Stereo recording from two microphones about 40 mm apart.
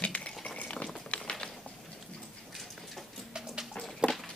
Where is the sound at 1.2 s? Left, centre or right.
Left.